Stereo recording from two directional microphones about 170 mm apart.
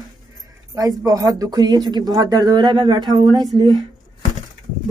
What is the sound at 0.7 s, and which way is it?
Speech, 20° right (ahead or behind).